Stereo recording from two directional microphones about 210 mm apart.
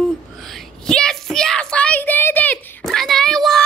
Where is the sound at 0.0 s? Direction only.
5° left (ahead or behind).